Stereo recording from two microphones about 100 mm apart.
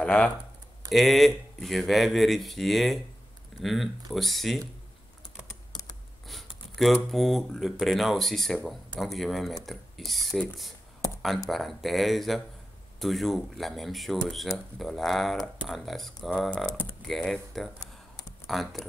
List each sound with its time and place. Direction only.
0.0 s speech: 10° left (ahead or behind)
5.7 s computer keyboard: 45° left (ahead or behind)
6.2 s speech: centre (ahead or behind)
11.5 s speech: centre (ahead or behind)